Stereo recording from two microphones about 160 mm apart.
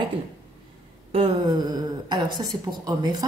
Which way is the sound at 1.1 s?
30° right (ahead or behind).